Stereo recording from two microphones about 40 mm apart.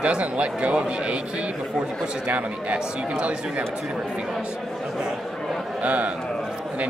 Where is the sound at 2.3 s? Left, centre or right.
Right.